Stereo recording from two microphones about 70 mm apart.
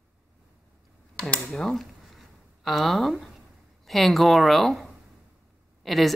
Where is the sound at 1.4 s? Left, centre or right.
Centre.